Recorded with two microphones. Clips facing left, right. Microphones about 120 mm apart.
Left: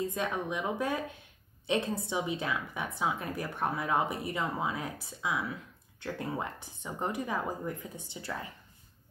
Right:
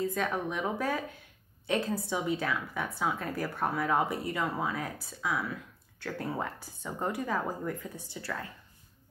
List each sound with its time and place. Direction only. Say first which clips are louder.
0.0 s a woman's voice: right 2 dB; 20° left (ahead or behind)